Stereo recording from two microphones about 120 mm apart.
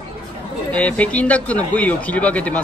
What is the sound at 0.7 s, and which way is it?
Speech, 10° left (ahead or behind).